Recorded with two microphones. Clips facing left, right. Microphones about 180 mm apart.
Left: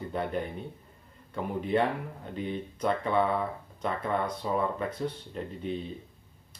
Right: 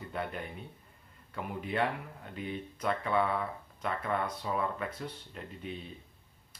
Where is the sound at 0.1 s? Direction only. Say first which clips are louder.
Left 6 dB; 30° left (ahead or behind).